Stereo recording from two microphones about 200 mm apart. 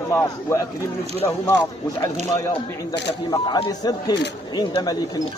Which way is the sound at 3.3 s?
20° left (ahead or behind).